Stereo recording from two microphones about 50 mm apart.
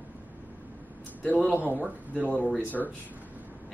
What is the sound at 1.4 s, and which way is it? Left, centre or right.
Speech, right.